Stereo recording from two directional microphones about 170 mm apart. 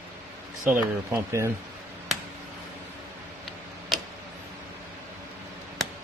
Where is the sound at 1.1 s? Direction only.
15° right (ahead or behind).